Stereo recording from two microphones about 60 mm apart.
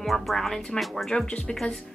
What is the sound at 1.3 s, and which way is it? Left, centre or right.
Speech, centre.